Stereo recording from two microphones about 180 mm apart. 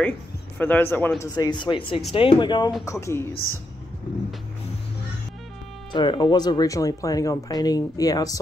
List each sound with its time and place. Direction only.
0.6 s speech: 10° left (ahead or behind)
5.9 s speech: 25° left (ahead or behind)